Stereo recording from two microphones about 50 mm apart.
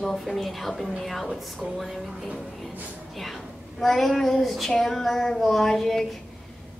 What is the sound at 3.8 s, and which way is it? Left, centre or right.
A woman's voice, centre.